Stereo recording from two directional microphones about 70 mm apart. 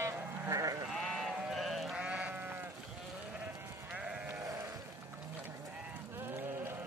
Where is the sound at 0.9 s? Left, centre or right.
Centre.